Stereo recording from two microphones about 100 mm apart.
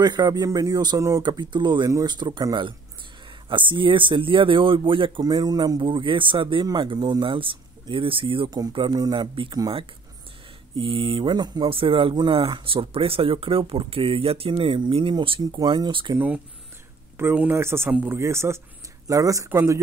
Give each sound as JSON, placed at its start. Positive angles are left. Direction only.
{"t": 0.0, "sound": "speech", "side_deg": -45}
{"t": 1.2, "sound": "a man's voice", "side_deg": -50}
{"t": 3.4, "sound": "speech", "side_deg": -55}
{"t": 5.3, "sound": "speech", "side_deg": -45}
{"t": 8.5, "sound": "a man's voice", "side_deg": -40}
{"t": 10.8, "sound": "speech", "side_deg": -60}
{"t": 11.3, "sound": "a man's voice", "side_deg": -45}
{"t": 11.7, "sound": "speech", "side_deg": -65}
{"t": 15.4, "sound": "a man's voice", "side_deg": -45}
{"t": 15.9, "sound": "speech", "side_deg": -60}
{"t": 17.2, "sound": "speech", "side_deg": -20}